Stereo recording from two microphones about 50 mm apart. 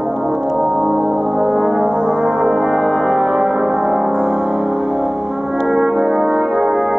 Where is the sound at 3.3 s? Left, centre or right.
Centre.